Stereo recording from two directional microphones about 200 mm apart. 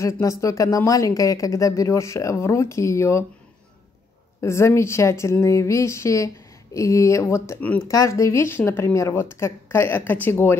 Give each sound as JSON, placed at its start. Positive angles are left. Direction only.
{"t": 0.0, "sound": "a woman's voice", "side_deg": 15}
{"t": 4.4, "sound": "a woman's voice", "side_deg": 15}